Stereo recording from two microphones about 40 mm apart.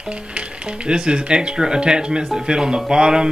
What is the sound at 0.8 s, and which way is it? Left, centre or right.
Speech, right.